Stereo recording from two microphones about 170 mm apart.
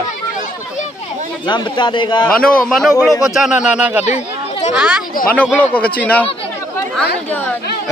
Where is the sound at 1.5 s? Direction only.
30° left (ahead or behind).